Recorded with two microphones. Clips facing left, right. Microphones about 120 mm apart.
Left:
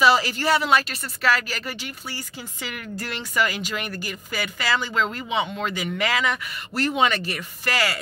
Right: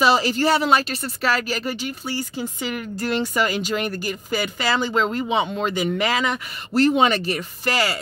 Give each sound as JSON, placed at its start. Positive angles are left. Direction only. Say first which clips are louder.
{"t": 0.0, "sound": "speech", "louder": "right 2 dB", "side_deg": -25}